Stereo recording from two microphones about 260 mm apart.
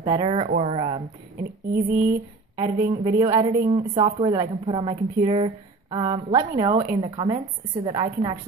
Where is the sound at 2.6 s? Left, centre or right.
Centre.